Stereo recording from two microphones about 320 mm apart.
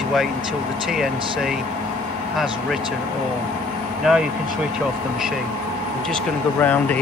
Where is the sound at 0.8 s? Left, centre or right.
Centre.